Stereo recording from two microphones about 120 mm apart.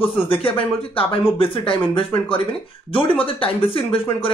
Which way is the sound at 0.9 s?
50° left (ahead or behind).